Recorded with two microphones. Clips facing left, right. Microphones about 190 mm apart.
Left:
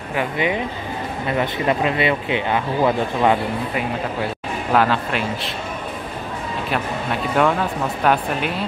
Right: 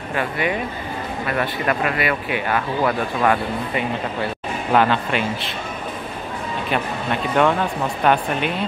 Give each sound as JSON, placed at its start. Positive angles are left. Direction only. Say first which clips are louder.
{"t": 0.1, "sound": "speech", "louder": "left 1 dB", "side_deg": 15}
{"t": 4.7, "sound": "speech", "louder": "right 1 dB", "side_deg": 0}
{"t": 6.7, "sound": "speech", "louder": "right 1 dB", "side_deg": 5}